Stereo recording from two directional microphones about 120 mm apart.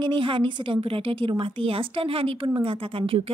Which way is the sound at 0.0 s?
45° right (ahead or behind).